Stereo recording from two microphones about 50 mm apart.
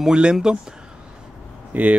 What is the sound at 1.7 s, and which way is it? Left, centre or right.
Speech, right.